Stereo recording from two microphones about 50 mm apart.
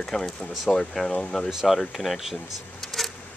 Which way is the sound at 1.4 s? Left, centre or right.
Centre.